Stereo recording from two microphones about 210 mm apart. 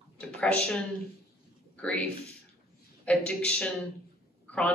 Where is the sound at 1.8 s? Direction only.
5° left (ahead or behind).